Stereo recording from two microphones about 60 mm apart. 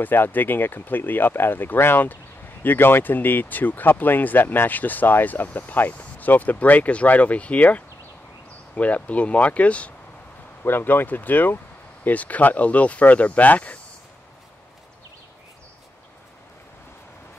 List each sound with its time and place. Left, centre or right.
0.0 s speech: left
10.6 s speech: left